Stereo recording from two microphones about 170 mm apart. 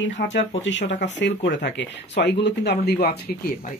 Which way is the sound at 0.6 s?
90° left.